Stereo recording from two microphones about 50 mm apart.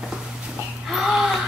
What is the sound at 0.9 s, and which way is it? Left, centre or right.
Wheeze, centre.